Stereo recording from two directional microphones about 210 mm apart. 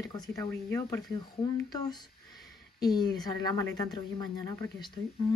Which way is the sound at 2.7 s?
20° left (ahead or behind).